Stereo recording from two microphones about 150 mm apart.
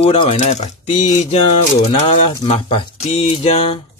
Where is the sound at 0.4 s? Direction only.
50° left (ahead or behind).